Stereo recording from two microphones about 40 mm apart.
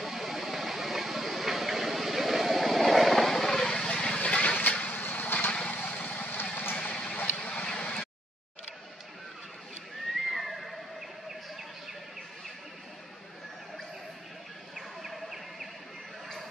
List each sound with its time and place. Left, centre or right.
0.0 s train: centre
4.2 s vehicle: left
6.7 s a sound: left
7.3 s vehicle: left
10.3 s neigh: centre
14.8 s a sound: centre